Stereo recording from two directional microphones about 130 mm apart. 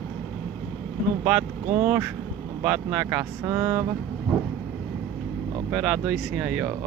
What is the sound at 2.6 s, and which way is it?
Speech, 10° right (ahead or behind).